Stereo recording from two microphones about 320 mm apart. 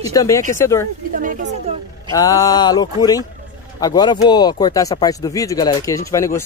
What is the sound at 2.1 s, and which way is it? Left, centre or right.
Speech, centre.